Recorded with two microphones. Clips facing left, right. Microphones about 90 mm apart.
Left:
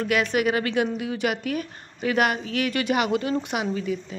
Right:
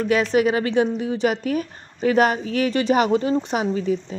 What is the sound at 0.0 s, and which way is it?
A woman's voice, 30° right (ahead or behind).